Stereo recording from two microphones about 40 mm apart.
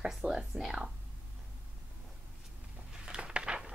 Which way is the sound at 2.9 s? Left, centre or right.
Right.